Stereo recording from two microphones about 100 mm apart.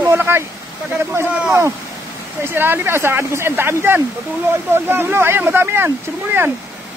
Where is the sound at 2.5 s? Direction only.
20° right (ahead or behind).